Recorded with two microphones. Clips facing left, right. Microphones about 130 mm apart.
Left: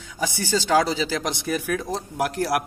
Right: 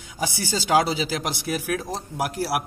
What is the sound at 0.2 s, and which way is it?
A man's voice, 10° right (ahead or behind).